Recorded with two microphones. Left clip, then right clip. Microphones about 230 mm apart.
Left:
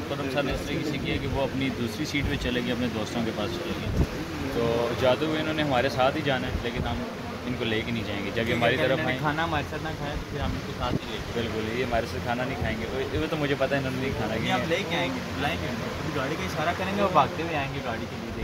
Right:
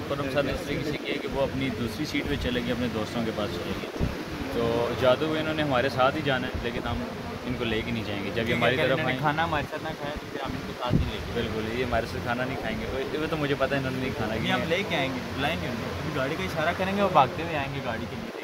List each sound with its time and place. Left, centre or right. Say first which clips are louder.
2.1 s speech: even; centre
5.0 s speech: right 2 dB; centre
8.4 s speech: even; centre
11.9 s speech: even; centre
14.5 s speech: even; right
16.6 s speech: even; right